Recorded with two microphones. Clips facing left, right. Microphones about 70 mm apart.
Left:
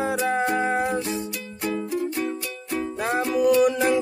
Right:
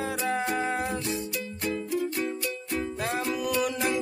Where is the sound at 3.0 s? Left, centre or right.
Left.